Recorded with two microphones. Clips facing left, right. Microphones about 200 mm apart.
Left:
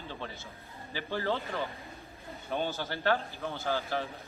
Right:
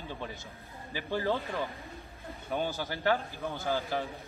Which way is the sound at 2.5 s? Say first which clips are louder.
Even; 15° right (ahead or behind).